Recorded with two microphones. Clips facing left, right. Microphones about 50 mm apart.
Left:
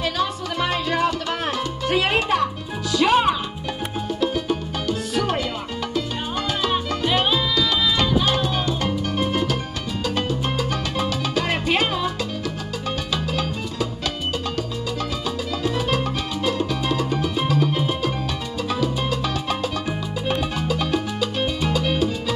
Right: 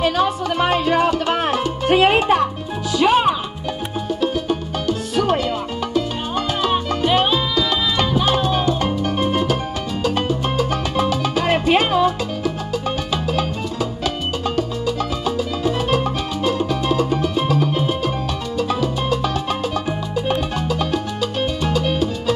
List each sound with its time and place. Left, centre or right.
0.0 s music: right
2.9 s music: centre
15.2 s music: centre